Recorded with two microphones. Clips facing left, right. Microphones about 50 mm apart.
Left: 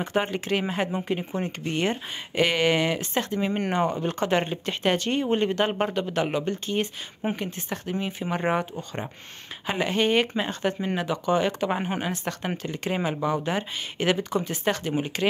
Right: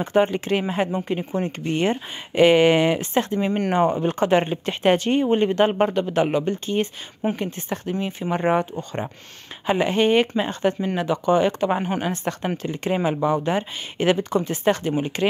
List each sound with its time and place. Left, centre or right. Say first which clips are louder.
0.0 s speech: right 6 dB; centre
9.7 s speech: right 5 dB; centre